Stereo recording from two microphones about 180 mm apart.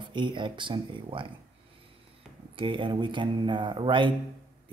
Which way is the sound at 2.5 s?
30° right (ahead or behind).